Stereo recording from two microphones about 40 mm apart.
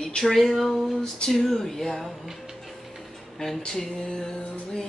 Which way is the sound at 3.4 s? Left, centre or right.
Centre.